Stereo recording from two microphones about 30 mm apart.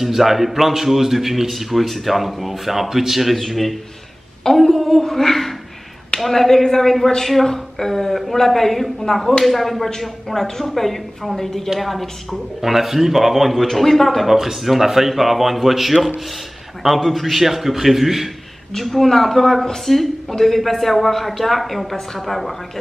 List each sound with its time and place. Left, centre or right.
0.0 s a man's voice: centre
3.3 s speech: centre
9.1 s speech: centre
9.4 s speech: centre
11.7 s a man's voice: centre
13.6 s speech: centre
14.2 s a man's voice: centre
18.7 s speech: centre